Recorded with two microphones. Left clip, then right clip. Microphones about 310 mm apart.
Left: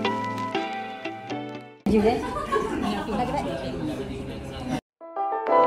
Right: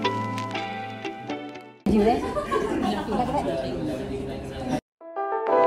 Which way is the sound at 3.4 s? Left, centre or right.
Centre.